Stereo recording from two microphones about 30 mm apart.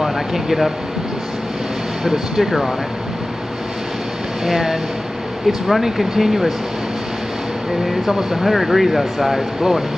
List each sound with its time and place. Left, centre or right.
0.0 s air conditioning: centre
2.0 s speech: centre
4.5 s speech: centre
8.1 s speech: centre